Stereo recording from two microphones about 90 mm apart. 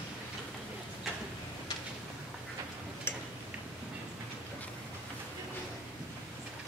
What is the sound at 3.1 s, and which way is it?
Tick-tock, 25° left (ahead or behind).